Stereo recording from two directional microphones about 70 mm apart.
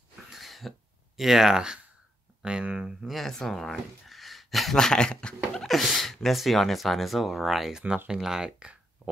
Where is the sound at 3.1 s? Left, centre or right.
Centre.